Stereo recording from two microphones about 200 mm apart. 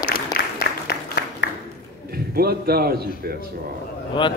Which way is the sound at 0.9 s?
50° left (ahead or behind).